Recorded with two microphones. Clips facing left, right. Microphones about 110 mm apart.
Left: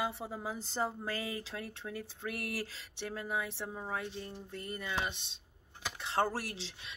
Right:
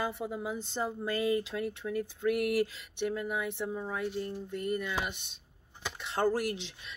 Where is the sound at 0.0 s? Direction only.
30° left (ahead or behind).